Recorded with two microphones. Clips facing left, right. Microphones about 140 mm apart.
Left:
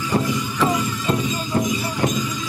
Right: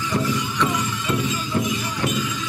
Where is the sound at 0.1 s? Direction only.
35° left (ahead or behind).